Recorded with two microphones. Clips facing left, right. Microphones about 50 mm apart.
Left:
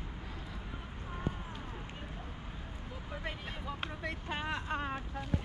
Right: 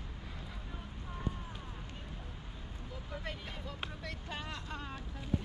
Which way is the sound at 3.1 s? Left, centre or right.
Centre.